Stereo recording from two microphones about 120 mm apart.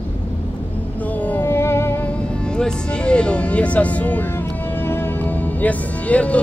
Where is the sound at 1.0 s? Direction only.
10° left (ahead or behind).